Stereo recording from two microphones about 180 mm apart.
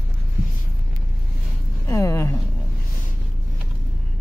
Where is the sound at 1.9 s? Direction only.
15° left (ahead or behind).